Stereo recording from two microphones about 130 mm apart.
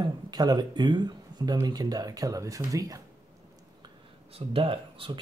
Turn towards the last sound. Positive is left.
turn(degrees=-45)  # may be behind; listen again after turning